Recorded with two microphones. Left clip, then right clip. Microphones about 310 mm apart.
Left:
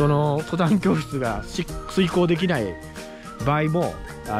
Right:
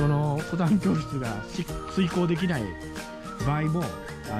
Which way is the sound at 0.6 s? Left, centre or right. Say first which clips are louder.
Left 5 dB; centre.